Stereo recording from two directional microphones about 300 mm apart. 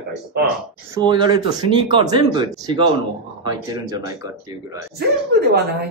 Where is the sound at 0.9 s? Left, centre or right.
Centre.